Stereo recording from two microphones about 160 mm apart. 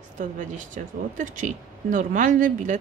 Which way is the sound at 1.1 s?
55° right (ahead or behind).